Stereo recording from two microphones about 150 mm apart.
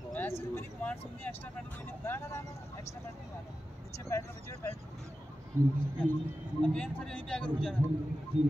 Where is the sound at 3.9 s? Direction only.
20° left (ahead or behind).